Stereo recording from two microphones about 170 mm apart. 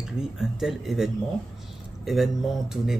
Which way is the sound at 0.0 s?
Centre (ahead or behind).